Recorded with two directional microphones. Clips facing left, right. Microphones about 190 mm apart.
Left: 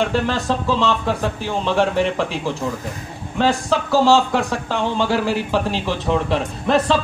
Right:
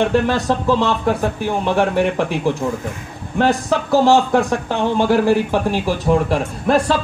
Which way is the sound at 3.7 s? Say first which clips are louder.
Right 1 dB; 15° right (ahead or behind).